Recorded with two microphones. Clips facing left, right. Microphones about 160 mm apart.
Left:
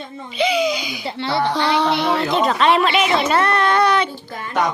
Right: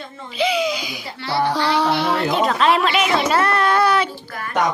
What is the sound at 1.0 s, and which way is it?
Speech, 25° left (ahead or behind).